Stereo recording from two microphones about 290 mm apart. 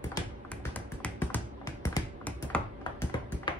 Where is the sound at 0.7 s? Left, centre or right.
Centre.